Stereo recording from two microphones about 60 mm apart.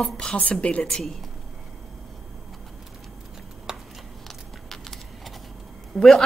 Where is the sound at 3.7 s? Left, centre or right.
Centre.